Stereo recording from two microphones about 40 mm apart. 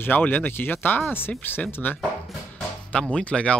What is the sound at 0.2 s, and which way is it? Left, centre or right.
Speech, left.